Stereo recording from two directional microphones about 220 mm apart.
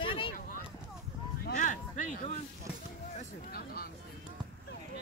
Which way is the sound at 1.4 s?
35° left (ahead or behind).